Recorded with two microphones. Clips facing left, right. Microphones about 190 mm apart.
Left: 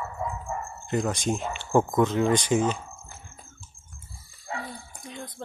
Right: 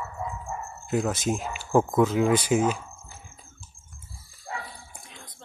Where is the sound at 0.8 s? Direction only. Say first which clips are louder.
Right 1 dB; 5° right (ahead or behind).